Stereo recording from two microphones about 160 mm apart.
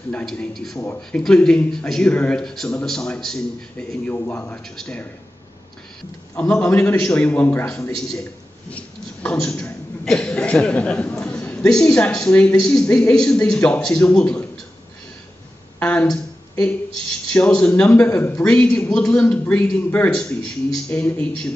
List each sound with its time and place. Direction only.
0.1 s speech: 5° left (ahead or behind)
6.5 s a man's voice: 10° left (ahead or behind)
15.8 s a sound: 5° left (ahead or behind)
17.3 s a man's voice: 5° left (ahead or behind)
18.1 s speech: 20° left (ahead or behind)
18.4 s speech: 5° left (ahead or behind)